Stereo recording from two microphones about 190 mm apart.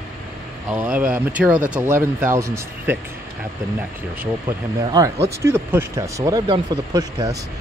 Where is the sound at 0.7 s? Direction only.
5° right (ahead or behind).